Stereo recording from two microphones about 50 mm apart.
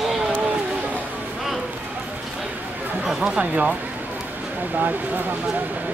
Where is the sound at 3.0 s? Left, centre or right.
Centre.